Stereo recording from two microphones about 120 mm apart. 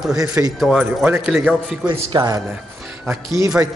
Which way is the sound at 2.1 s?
35° right (ahead or behind).